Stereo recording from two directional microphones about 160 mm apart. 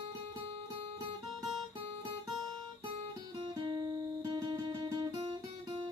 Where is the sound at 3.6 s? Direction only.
30° right (ahead or behind).